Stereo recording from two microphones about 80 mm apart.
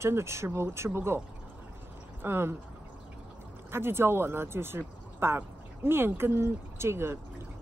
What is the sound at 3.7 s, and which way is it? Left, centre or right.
Speech, right.